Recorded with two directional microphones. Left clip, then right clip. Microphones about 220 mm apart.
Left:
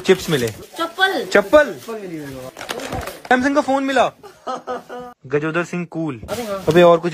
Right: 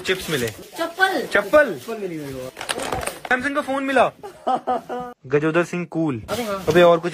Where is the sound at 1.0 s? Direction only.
15° left (ahead or behind).